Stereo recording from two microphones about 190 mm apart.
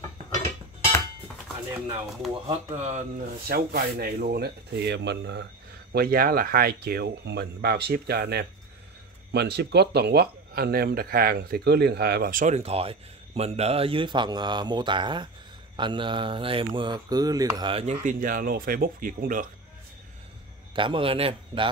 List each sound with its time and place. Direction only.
2.4 s speech: 35° right (ahead or behind)
3.4 s speech: 55° right (ahead or behind)
5.9 s speech: 50° right (ahead or behind)
20.7 s speech: 25° right (ahead or behind)